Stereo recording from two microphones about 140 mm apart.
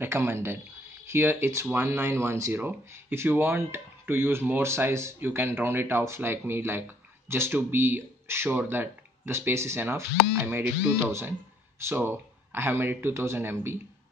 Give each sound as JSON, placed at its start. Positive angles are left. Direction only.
{"t": 0.0, "sound": "speech", "side_deg": -15}